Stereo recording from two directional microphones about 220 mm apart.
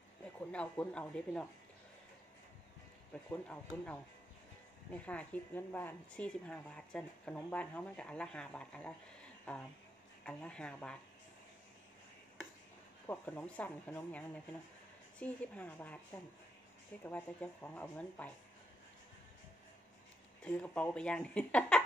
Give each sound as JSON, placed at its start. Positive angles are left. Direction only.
{"t": 0.5, "sound": "speech", "side_deg": 5}
{"t": 3.3, "sound": "speech", "side_deg": 5}
{"t": 13.0, "sound": "speech", "side_deg": 5}
{"t": 20.4, "sound": "speech", "side_deg": 5}